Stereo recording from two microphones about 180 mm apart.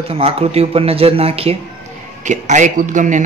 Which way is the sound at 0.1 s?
35° right (ahead or behind).